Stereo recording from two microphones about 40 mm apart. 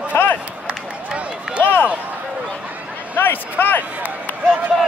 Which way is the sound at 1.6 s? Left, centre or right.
Left.